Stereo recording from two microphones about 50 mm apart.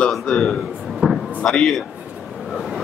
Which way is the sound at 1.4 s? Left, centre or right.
Centre.